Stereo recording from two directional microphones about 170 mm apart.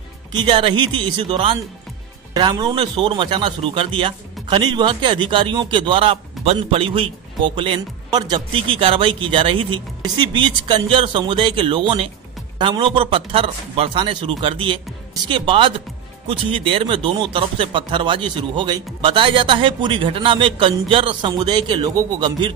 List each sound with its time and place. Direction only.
0.3 s a man's voice: 25° right (ahead or behind)